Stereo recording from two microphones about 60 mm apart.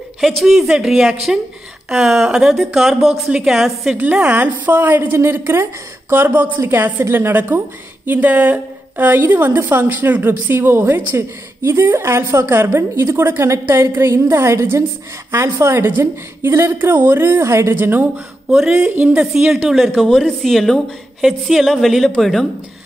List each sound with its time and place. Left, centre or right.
0.2 s a woman's voice: centre
3.9 s a woman's voice: right
6.2 s a woman's voice: right
17.7 s a woman's voice: right
18.5 s speech: centre
18.9 s a woman's voice: right
19.1 s speech: centre
20.0 s a woman's voice: centre